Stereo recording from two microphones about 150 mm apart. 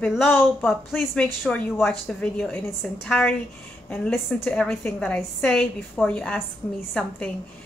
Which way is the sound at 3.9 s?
10° left (ahead or behind).